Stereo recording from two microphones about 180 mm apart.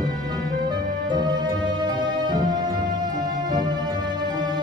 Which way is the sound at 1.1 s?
25° right (ahead or behind).